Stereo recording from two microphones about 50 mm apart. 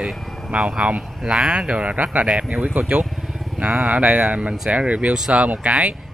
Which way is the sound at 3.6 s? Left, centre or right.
Right.